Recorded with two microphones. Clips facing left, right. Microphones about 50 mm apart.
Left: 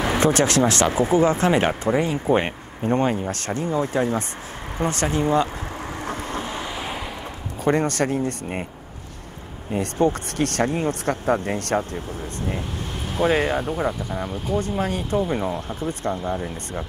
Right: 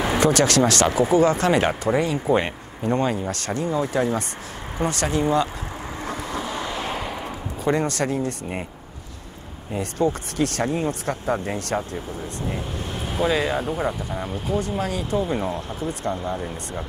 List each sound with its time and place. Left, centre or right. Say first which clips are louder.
0.2 s speech: right 1 dB; left
6.0 s boat: right 1 dB; left
6.6 s waves: right 2 dB; centre
7.6 s speech: left 2 dB; left
9.7 s speech: left 2 dB; left
13.2 s speech: left 2 dB; centre
13.6 s speech: left 1 dB; centre
14.6 s speech: left 1 dB; left
15.2 s speech: left 1 dB; centre